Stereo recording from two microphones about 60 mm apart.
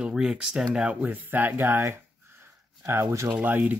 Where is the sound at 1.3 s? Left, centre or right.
Right.